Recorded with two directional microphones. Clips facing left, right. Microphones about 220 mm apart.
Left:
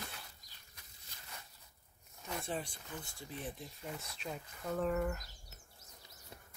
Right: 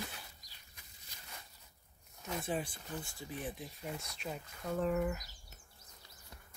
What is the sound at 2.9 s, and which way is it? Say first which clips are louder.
Speech: right 3 dB; 40° right (ahead or behind).